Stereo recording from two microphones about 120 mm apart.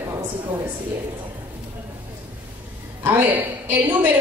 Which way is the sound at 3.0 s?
15° right (ahead or behind).